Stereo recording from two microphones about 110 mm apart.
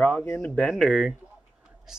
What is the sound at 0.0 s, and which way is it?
Speech, 15° left (ahead or behind).